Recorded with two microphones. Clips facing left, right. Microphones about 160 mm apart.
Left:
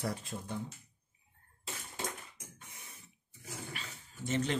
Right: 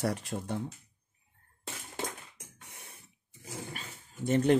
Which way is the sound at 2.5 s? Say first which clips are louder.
Right 2 dB; 70° right (ahead or behind).